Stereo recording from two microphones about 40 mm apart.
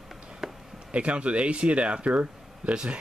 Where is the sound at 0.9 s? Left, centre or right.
Right.